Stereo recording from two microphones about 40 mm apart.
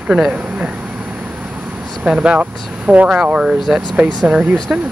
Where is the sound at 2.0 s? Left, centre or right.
Right.